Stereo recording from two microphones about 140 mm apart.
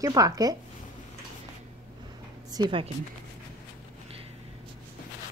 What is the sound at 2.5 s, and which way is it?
Speech, 30° right (ahead or behind).